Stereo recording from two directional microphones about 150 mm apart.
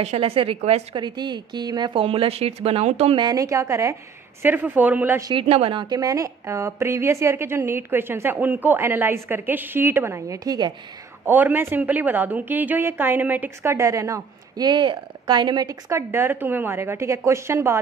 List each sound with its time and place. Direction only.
0.0 s speech: 40° right (ahead or behind)
0.9 s speech: 30° right (ahead or behind); by 3.2 s 45° right (ahead or behind)
3.2 s a woman's voice: 25° right (ahead or behind)
5.3 s a woman's voice: 40° right (ahead or behind)
11.2 s a woman's voice: 15° right (ahead or behind)